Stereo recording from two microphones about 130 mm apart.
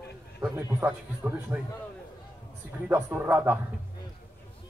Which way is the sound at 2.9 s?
15° right (ahead or behind).